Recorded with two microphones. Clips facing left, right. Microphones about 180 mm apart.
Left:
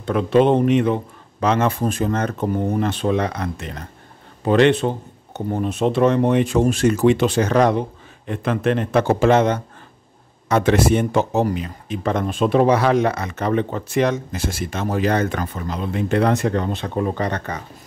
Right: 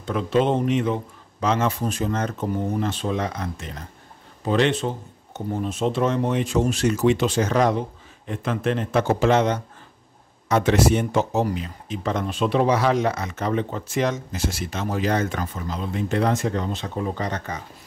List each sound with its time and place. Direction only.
0.0 s speech: 60° left (ahead or behind)